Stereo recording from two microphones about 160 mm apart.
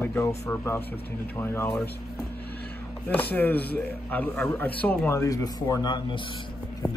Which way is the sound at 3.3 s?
10° left (ahead or behind).